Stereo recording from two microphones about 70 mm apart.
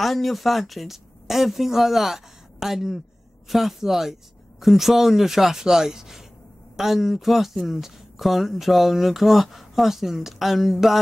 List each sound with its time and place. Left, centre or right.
0.0 s speech: centre